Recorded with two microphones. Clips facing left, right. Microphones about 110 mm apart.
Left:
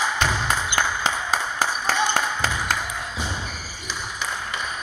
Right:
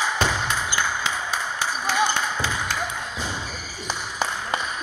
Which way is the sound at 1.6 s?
45° left (ahead or behind).